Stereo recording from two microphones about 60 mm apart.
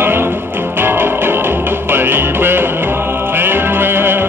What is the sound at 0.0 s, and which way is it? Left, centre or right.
Music, right.